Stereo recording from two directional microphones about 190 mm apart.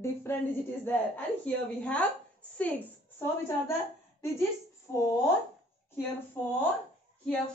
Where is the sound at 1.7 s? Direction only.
5° left (ahead or behind).